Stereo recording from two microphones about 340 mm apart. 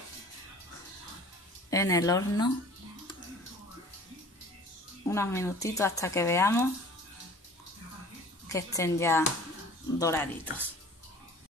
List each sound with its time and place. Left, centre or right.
1.7 s speech: centre
5.0 s speech: centre
8.5 s speech: centre